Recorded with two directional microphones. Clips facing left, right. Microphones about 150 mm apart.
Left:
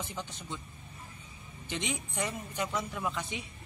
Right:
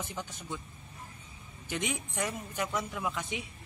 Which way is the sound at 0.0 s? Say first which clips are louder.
Even; 15° right (ahead or behind).